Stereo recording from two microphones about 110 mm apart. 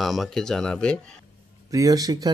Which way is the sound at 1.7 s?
35° right (ahead or behind).